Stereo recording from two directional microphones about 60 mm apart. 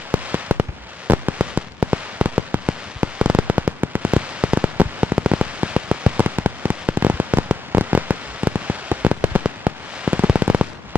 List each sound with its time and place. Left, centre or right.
0.1 s fireworks: right
4.1 s firecracker: centre
7.8 s fireworks: right